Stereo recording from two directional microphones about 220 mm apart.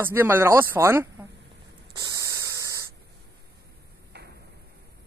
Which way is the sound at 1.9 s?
15° right (ahead or behind).